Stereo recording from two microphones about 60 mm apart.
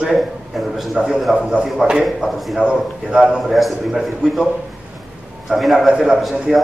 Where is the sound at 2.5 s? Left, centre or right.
Centre.